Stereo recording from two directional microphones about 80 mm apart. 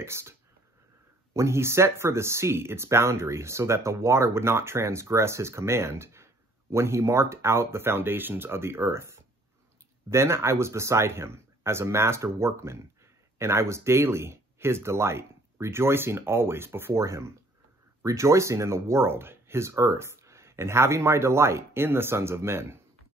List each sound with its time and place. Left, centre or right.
0.0 s speech: right